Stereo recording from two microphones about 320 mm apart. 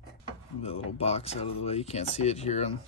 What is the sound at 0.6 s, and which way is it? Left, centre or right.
Speech, centre.